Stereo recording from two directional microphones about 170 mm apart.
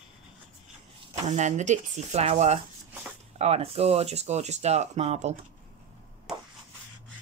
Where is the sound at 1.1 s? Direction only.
45° right (ahead or behind).